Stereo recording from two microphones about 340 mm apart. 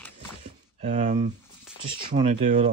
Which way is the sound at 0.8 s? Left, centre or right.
Centre.